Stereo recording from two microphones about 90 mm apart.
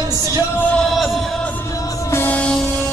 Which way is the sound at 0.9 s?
Centre (ahead or behind).